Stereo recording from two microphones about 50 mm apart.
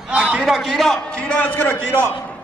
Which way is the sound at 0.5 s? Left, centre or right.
Centre.